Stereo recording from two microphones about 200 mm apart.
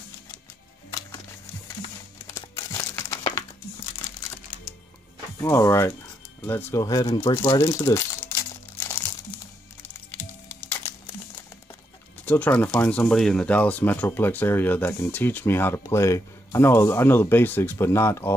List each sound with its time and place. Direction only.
1.8 s crumpling: 15° left (ahead or behind)
5.4 s speech: 15° left (ahead or behind)
7.2 s crumpling: 15° left (ahead or behind)
10.5 s music: 10° left (ahead or behind)
12.3 s speech: 10° left (ahead or behind)